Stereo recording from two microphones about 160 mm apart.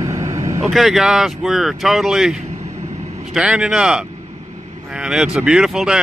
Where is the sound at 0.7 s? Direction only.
Centre (ahead or behind).